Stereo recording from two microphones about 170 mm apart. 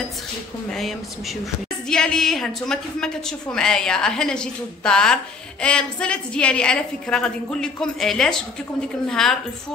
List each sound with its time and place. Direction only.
0.7 s a woman's voice: centre (ahead or behind)